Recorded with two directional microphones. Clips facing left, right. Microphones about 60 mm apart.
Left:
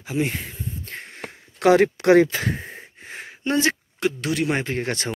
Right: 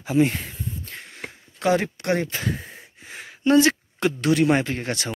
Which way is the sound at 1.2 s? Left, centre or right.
Left.